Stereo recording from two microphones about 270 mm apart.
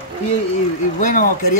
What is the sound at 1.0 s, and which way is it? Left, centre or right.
Speech, left.